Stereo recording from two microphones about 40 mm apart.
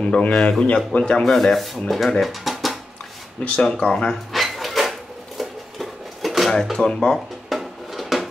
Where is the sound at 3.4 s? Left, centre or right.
Left.